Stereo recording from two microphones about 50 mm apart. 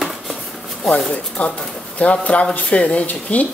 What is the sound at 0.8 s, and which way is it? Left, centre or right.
Speech, left.